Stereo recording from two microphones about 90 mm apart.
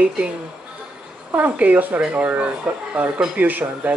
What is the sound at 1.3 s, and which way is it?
Speech, 20° right (ahead or behind).